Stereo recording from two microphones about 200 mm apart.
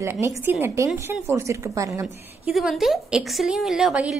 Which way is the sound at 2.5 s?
Centre (ahead or behind).